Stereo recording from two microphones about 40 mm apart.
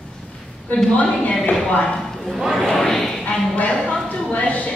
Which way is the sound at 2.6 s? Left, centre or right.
Centre.